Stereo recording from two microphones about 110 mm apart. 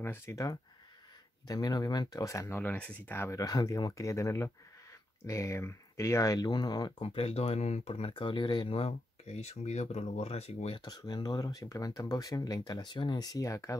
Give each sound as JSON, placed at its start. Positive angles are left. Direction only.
{"t": 0.0, "sound": "speech", "side_deg": 20}
{"t": 2.6, "sound": "speech", "side_deg": 15}
{"t": 7.0, "sound": "speech", "side_deg": 65}
{"t": 8.1, "sound": "speech", "side_deg": 45}
{"t": 10.8, "sound": "speech", "side_deg": 40}